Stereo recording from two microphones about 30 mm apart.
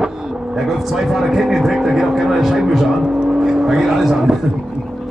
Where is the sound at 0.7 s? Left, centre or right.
Centre.